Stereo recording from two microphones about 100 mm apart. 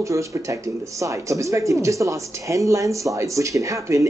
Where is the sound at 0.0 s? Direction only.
30° right (ahead or behind).